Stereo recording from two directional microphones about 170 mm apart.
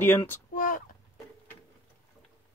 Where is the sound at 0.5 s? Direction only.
55° left (ahead or behind).